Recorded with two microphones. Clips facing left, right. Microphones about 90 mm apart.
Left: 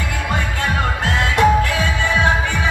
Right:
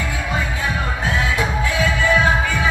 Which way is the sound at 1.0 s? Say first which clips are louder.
Left 6 dB; 70° left (ahead or behind).